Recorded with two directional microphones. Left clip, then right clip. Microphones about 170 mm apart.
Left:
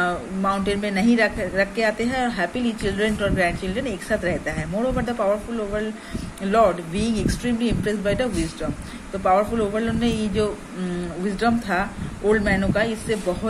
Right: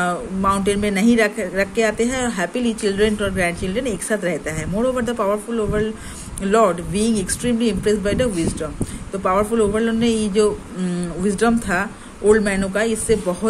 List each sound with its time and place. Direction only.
0.0 s speech: 50° right (ahead or behind)
6.4 s speech: 55° right (ahead or behind)